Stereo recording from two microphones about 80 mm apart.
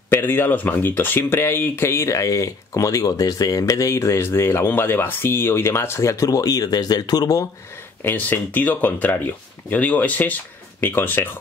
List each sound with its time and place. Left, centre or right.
0.1 s speech: left
8.0 s speech: left